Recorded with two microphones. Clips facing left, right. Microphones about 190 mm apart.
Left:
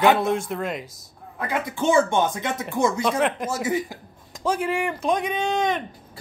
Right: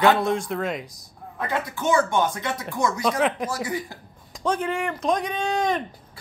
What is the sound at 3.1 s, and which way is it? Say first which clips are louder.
Speech: even; centre (ahead or behind).